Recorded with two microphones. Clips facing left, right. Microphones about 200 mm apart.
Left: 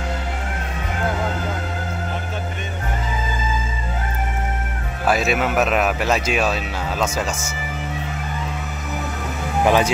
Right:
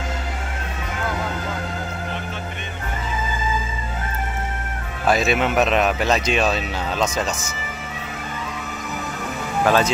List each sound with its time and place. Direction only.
5.0 s speech: 5° left (ahead or behind)
9.6 s speech: 15° left (ahead or behind)